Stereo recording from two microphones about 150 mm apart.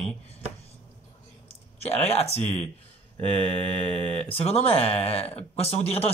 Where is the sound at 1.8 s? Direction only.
45° left (ahead or behind).